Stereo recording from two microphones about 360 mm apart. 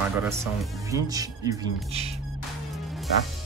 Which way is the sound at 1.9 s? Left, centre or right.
Centre.